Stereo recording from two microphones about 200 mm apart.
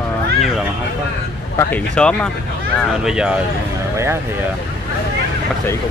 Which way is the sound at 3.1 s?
5° right (ahead or behind).